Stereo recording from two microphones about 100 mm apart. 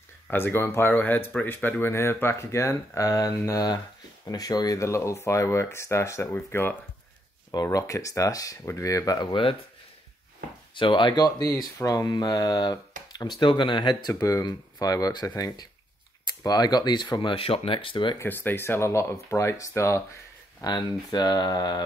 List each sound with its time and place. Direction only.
0.3 s speech: 20° left (ahead or behind)
7.5 s speech: 35° left (ahead or behind)
9.3 s speech: 60° left (ahead or behind)
10.7 s speech: 55° left (ahead or behind)
13.4 s speech: 50° left (ahead or behind)
18.2 s speech: 20° left (ahead or behind)
20.6 s speech: 45° left (ahead or behind)